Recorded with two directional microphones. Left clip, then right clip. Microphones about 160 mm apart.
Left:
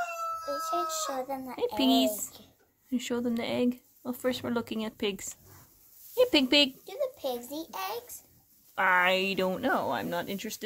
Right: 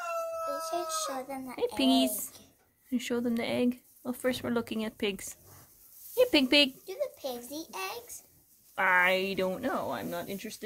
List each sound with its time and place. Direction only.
0.5 s a child's voice: 35° left (ahead or behind)
1.8 s speech: centre (ahead or behind)
6.9 s a child's voice: 35° left (ahead or behind)
8.7 s speech: centre (ahead or behind); by 10.6 s 20° left (ahead or behind)